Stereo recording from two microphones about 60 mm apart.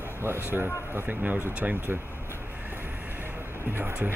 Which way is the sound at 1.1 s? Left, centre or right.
Right.